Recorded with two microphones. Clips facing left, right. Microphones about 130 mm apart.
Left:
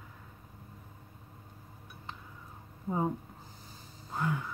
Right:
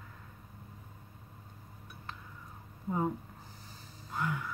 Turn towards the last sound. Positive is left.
turn(degrees=30)  # may be behind; listen again after turning